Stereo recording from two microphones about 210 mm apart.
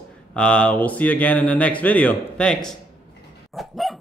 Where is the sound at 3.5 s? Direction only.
Centre (ahead or behind).